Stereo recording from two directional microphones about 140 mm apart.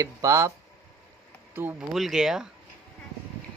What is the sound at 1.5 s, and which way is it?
Speech, 15° right (ahead or behind).